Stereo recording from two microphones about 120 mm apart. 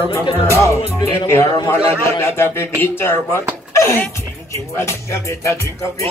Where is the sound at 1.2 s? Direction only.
20° left (ahead or behind).